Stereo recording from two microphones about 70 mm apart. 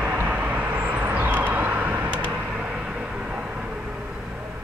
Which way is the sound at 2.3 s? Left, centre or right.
Centre.